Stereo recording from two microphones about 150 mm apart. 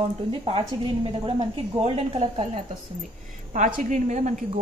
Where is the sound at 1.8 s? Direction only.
40° right (ahead or behind).